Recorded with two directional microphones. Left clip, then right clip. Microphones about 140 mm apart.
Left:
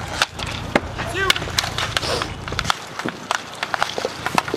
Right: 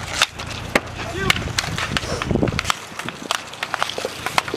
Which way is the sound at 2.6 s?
10° right (ahead or behind).